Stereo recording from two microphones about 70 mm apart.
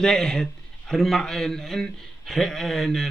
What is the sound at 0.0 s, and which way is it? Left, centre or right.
Speech, centre.